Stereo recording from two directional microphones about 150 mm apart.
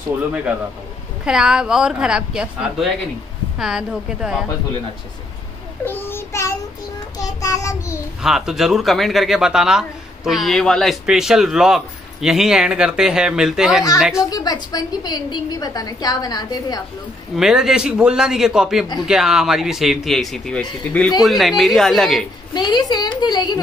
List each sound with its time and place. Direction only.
1.2 s speech: 5° right (ahead or behind)
5.9 s child singing: 15° left (ahead or behind)
8.2 s speech: 5° right (ahead or behind)
14.3 s a woman's voice: 25° left (ahead or behind)
17.4 s speech: 5° right (ahead or behind)
21.2 s speech: centre (ahead or behind)
22.5 s a woman's voice: 30° left (ahead or behind)